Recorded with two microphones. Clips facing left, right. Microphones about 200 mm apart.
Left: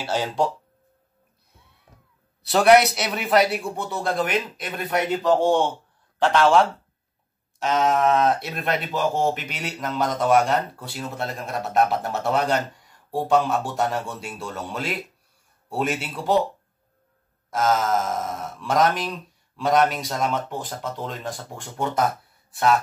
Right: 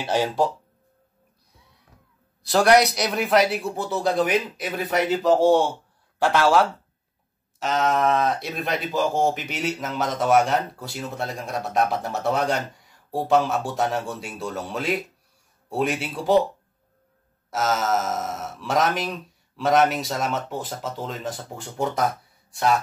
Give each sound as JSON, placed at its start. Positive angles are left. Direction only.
{"t": 0.0, "sound": "speech", "side_deg": -15}
{"t": 2.5, "sound": "a man's voice", "side_deg": 5}
{"t": 8.9, "sound": "speech", "side_deg": 55}
{"t": 9.2, "sound": "speech", "side_deg": 0}
{"t": 17.5, "sound": "speech", "side_deg": -5}